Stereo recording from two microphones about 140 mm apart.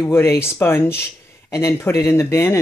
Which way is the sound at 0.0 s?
20° left (ahead or behind).